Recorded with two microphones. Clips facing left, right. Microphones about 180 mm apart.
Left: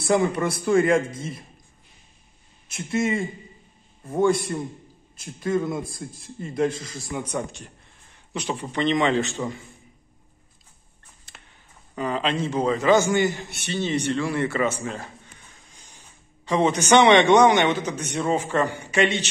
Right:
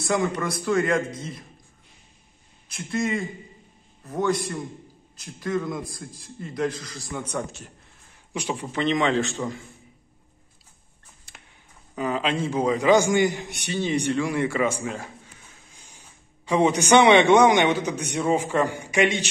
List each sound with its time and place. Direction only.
0.0 s a man's voice: 30° left (ahead or behind)
2.7 s a man's voice: 25° left (ahead or behind)
7.3 s a man's voice: 5° right (ahead or behind)
11.9 s a man's voice: 5° right (ahead or behind)